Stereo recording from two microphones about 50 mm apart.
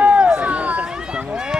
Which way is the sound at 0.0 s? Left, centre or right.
Right.